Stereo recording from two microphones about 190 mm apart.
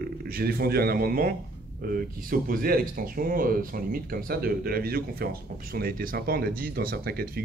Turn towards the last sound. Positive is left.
turn(degrees=-55)  # may be behind; listen again after turning